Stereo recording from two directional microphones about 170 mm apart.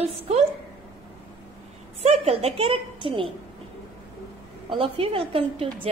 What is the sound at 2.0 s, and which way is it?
A woman's voice, 35° right (ahead or behind).